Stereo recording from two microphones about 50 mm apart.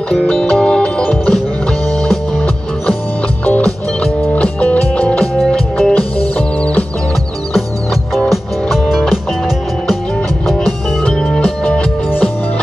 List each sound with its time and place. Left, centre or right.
0.3 s music: centre
4.3 s music: left
5.5 s music: centre
5.9 s music: left
8.3 s music: centre
10.4 s music: centre